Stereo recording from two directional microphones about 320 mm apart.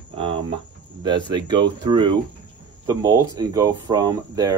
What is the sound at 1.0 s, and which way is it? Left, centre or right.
Speech, centre.